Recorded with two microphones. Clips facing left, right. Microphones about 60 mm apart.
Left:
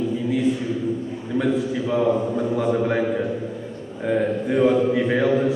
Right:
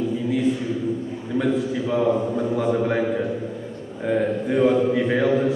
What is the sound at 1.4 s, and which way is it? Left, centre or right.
A man's voice, centre.